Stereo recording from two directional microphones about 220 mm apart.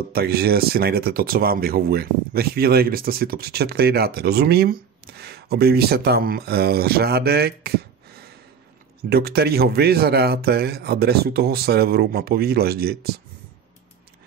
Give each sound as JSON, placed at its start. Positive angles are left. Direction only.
{"t": 0.1, "sound": "speech", "side_deg": -45}
{"t": 9.1, "sound": "speech", "side_deg": -45}